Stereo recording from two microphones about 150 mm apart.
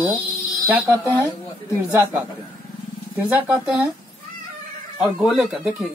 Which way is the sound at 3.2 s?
10° right (ahead or behind).